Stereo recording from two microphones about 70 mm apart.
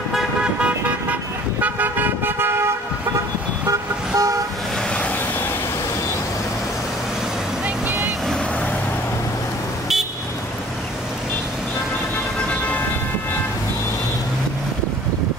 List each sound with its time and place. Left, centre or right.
0.6 s car: centre; by 2.7 s right
3.6 s toot: right
7.6 s vehicle: right